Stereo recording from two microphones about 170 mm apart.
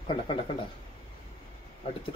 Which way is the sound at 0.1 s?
30° left (ahead or behind).